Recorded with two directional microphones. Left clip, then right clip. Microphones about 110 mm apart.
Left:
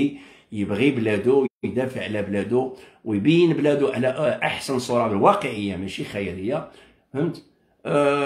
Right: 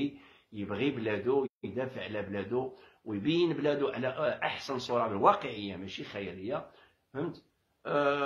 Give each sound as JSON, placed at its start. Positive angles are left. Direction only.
{"t": 0.6, "sound": "a man's voice", "side_deg": 15}
{"t": 7.8, "sound": "speech", "side_deg": 20}